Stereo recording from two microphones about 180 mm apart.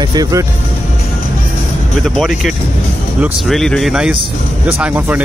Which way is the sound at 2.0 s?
Centre (ahead or behind).